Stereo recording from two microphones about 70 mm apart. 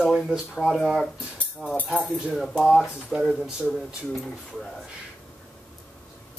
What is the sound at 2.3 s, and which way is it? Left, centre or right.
Speech, centre.